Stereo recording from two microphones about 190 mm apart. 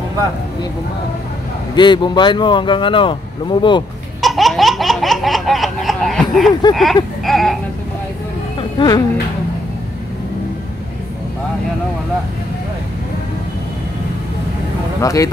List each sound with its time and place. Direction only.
1.8 s speech: 25° left (ahead or behind)
4.2 s laughter: centre (ahead or behind)
6.7 s speech: centre (ahead or behind)
8.5 s insect: 25° left (ahead or behind)
15.0 s speech: 15° left (ahead or behind)